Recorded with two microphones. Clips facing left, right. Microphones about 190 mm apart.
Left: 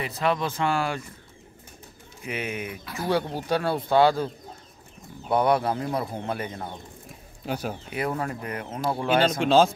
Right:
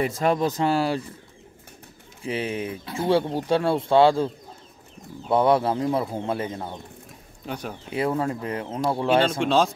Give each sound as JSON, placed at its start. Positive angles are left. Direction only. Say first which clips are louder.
{"t": 0.0, "sound": "speech", "louder": "right 4 dB", "side_deg": -45}
{"t": 2.2, "sound": "speech", "louder": "right 4 dB", "side_deg": -30}
{"t": 5.3, "sound": "speech", "louder": "right 3 dB", "side_deg": -25}
{"t": 7.4, "sound": "speech", "louder": "left 2 dB", "side_deg": 5}
{"t": 7.9, "sound": "speech", "louder": "right 6 dB", "side_deg": -25}
{"t": 9.4, "sound": "speech", "louder": "left 2 dB", "side_deg": 0}